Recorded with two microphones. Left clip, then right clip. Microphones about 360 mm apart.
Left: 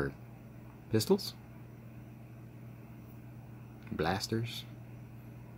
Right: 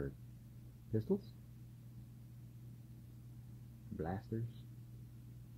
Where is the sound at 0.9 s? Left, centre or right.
Centre.